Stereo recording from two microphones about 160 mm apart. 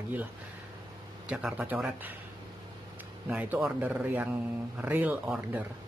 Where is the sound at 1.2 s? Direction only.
10° right (ahead or behind).